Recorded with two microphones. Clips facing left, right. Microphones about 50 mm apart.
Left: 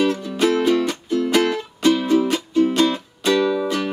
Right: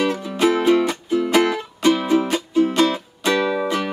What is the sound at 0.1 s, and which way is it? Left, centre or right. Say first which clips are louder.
Music: right 1 dB; centre.